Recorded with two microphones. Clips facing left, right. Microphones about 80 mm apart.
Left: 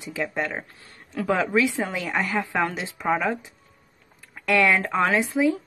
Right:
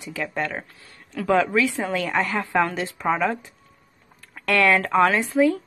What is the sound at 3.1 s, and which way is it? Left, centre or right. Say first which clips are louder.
Speech: right 1 dB; centre.